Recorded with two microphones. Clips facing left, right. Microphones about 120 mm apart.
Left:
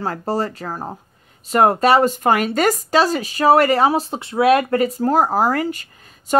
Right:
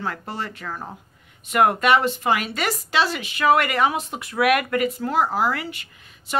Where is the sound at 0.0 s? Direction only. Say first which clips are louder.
Left 8 dB; 35° left (ahead or behind).